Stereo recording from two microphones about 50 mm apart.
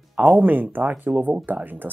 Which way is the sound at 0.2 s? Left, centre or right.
Right.